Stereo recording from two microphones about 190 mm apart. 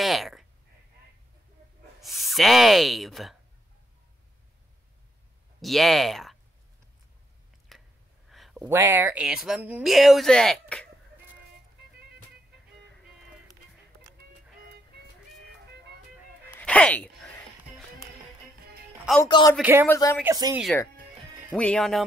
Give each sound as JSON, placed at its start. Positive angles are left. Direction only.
{"t": 0.0, "sound": "a sound", "side_deg": 0}
{"t": 2.0, "sound": "speech", "side_deg": 0}
{"t": 5.6, "sound": "speech", "side_deg": 0}
{"t": 7.7, "sound": "a sound", "side_deg": 0}
{"t": 8.6, "sound": "speech", "side_deg": -15}
{"t": 16.4, "sound": "music", "side_deg": 10}
{"t": 19.2, "sound": "speech", "side_deg": 25}
{"t": 19.6, "sound": "speech", "side_deg": -10}
{"t": 19.9, "sound": "speech", "side_deg": 15}
{"t": 20.2, "sound": "speech", "side_deg": -20}
{"t": 21.5, "sound": "speech", "side_deg": 5}